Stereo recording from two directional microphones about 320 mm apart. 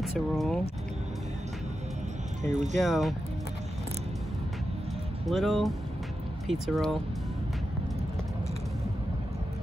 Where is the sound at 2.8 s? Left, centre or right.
Centre.